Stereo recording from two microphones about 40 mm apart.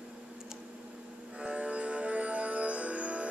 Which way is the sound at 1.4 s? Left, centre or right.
Right.